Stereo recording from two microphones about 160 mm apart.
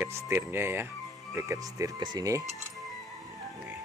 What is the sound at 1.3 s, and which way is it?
Cutlery, 20° right (ahead or behind).